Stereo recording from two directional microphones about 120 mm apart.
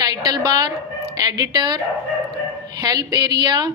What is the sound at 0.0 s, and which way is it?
A woman's voice, 35° right (ahead or behind).